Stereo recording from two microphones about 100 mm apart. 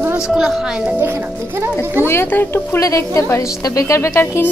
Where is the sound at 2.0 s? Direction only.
20° left (ahead or behind).